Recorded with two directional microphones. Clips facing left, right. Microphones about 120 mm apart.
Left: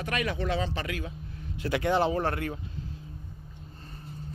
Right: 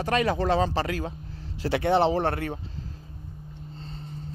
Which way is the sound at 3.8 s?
25° right (ahead or behind).